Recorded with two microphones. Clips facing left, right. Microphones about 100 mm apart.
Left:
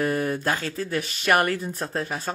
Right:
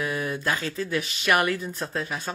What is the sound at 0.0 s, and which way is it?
Speech, 45° left (ahead or behind).